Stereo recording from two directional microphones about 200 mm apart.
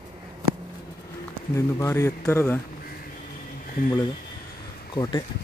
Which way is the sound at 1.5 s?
15° left (ahead or behind).